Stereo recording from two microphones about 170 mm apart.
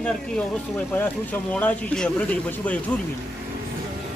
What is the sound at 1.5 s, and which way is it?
A man's voice, 5° left (ahead or behind).